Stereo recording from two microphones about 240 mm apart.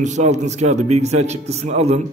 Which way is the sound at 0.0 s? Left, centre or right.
Right.